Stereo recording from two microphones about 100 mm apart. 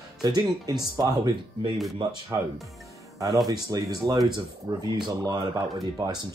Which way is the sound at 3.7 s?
35° right (ahead or behind).